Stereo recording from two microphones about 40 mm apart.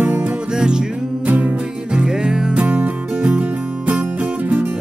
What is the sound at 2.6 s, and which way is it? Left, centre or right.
Music, right.